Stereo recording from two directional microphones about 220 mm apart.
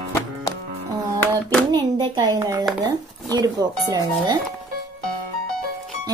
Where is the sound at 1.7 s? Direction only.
20° right (ahead or behind).